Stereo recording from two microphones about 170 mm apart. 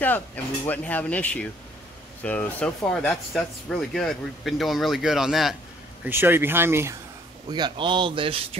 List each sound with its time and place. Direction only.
0.7 s speech: 10° left (ahead or behind)
6.0 s speech: 10° right (ahead or behind)
7.5 s speech: 25° right (ahead or behind)